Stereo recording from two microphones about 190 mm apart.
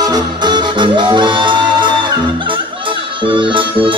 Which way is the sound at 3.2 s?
25° right (ahead or behind).